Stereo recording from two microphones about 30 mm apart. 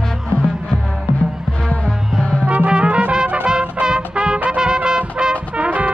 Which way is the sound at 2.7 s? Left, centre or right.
Right.